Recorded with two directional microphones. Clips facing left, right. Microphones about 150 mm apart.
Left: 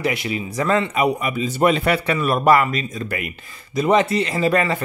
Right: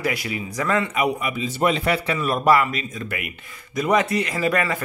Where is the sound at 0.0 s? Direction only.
25° left (ahead or behind).